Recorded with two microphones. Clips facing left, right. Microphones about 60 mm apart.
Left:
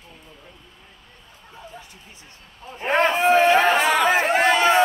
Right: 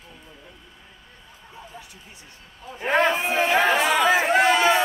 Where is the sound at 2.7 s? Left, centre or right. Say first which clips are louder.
Left 1 dB; left.